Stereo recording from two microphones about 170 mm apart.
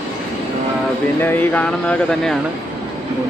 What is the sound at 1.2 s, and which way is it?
Speech, 10° left (ahead or behind).